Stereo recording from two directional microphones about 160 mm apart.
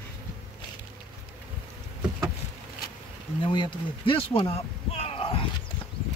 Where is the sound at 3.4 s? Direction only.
30° left (ahead or behind).